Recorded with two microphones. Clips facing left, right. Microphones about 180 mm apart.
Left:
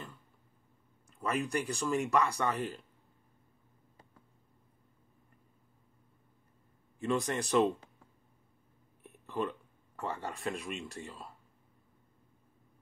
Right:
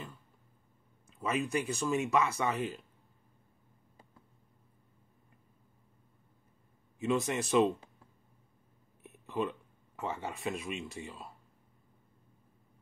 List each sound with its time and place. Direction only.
1.2 s speech: 5° right (ahead or behind)
7.0 s speech: 5° right (ahead or behind)
9.3 s speech: 5° right (ahead or behind)